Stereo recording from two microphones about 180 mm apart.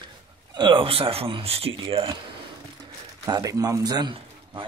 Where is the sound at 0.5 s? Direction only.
25° right (ahead or behind).